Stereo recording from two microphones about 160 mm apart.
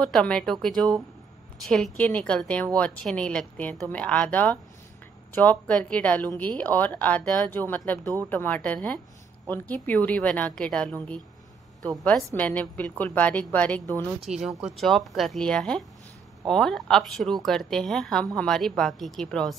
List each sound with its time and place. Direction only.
0.0 s a woman's voice: 5° left (ahead or behind)
8.0 s speech: 20° right (ahead or behind)
8.3 s a woman's voice: 10° left (ahead or behind)
14.2 s a woman's voice: 5° right (ahead or behind)